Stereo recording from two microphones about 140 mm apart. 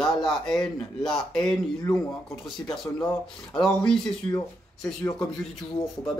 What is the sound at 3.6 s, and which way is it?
Speech, 5° left (ahead or behind).